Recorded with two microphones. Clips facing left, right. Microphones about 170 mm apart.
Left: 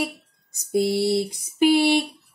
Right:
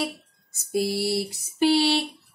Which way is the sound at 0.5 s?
20° left (ahead or behind).